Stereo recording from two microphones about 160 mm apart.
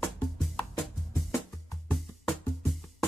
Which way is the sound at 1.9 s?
Centre (ahead or behind).